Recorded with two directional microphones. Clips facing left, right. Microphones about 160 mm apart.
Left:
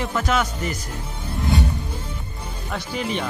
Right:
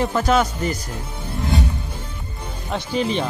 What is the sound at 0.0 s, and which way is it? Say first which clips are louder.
Speech: right 4 dB; 35° right (ahead or behind).